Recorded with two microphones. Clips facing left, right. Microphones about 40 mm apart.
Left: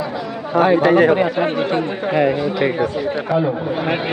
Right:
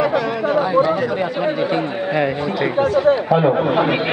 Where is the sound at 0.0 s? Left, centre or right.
Right.